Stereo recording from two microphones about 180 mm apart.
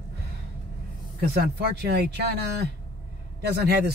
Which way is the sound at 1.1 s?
60° right (ahead or behind).